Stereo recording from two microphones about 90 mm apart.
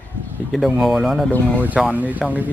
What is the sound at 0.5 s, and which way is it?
Speech, centre (ahead or behind).